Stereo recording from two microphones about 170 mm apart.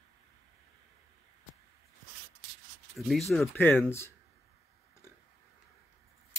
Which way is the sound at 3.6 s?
10° left (ahead or behind).